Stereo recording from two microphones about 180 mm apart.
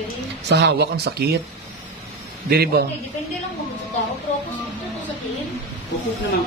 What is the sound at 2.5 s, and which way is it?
Speech, 60° right (ahead or behind).